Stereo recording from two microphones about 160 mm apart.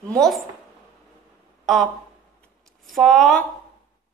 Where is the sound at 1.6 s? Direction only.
Centre (ahead or behind).